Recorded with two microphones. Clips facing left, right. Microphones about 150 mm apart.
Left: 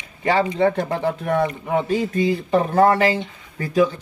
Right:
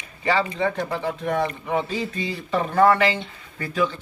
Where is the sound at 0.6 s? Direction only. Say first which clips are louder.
Left 5 dB; 50° left (ahead or behind).